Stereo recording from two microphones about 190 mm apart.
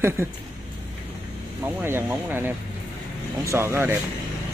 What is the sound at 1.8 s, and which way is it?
Speech, 10° right (ahead or behind).